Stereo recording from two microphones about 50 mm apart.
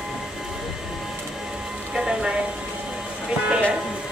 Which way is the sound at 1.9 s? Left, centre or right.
Centre.